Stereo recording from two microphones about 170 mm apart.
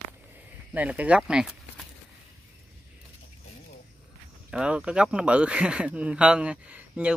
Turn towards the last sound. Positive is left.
turn(degrees=-5)  # may be behind; listen again after turning